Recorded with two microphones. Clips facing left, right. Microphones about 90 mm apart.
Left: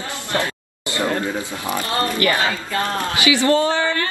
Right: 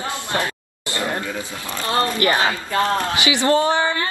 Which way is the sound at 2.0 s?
20° right (ahead or behind).